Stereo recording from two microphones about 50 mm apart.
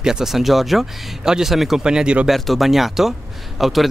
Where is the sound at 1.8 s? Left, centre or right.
Centre.